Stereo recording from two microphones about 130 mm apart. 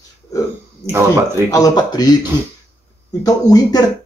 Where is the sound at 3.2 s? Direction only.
30° left (ahead or behind).